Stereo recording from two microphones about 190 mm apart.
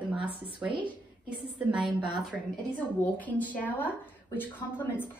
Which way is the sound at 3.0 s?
10° left (ahead or behind).